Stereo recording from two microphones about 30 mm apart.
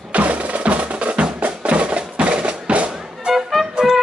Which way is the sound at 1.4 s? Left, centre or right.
Right.